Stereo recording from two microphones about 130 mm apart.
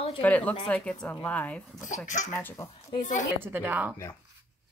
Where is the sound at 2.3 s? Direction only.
20° left (ahead or behind).